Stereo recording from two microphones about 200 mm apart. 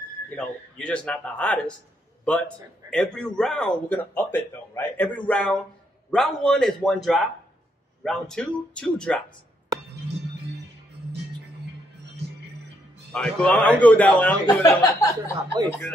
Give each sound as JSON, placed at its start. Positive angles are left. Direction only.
{"t": 0.3, "sound": "a man's voice", "side_deg": 5}
{"t": 13.1, "sound": "a man's voice", "side_deg": 5}
{"t": 14.4, "sound": "a man's voice", "side_deg": 20}